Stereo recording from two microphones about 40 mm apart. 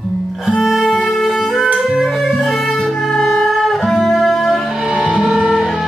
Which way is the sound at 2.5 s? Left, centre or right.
Centre.